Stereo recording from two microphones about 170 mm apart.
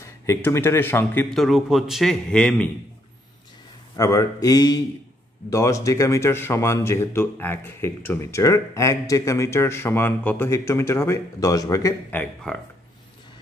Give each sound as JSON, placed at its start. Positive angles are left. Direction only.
{"t": 0.0, "sound": "speech", "side_deg": 15}
{"t": 1.3, "sound": "a man's voice", "side_deg": 0}
{"t": 3.9, "sound": "speech", "side_deg": 20}